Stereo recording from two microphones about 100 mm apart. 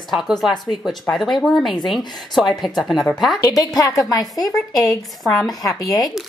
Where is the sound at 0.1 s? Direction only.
Centre (ahead or behind).